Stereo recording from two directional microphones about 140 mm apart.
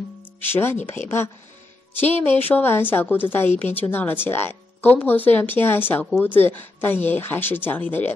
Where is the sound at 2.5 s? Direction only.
15° left (ahead or behind).